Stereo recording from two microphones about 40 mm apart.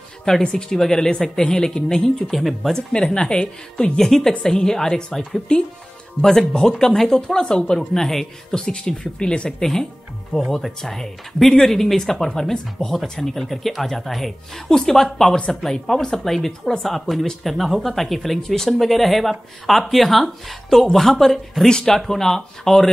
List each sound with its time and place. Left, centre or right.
0.2 s a woman's voice: centre
2.3 s speech: centre
2.7 s a woman's voice: centre
8.5 s a woman's voice: left
9.6 s speech: centre
21.6 s a woman's voice: centre
21.9 s speech: centre